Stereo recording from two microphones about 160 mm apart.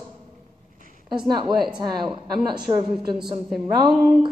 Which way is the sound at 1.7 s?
30° right (ahead or behind).